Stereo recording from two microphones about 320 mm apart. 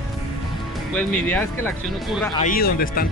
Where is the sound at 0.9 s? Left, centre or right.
Centre.